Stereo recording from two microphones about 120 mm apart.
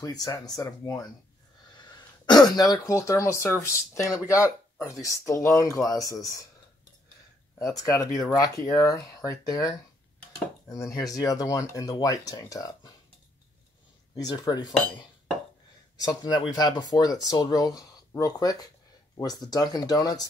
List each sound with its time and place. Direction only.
0.0 s speech: 30° left (ahead or behind)
7.5 s speech: 25° left (ahead or behind)
14.1 s speech: 35° left (ahead or behind)